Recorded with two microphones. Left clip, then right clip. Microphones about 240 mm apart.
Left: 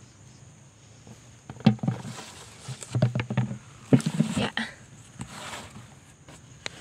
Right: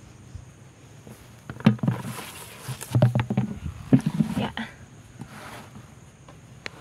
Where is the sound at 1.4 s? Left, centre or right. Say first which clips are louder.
Right 2 dB; right.